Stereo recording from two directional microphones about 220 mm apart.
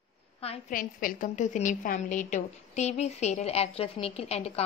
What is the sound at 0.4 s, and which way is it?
Speech, 25° left (ahead or behind).